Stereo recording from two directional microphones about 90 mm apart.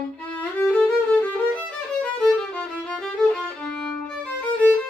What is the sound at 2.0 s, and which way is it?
Music, 5° left (ahead or behind).